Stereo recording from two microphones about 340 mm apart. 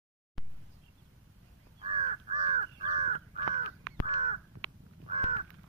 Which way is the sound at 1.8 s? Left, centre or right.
Centre.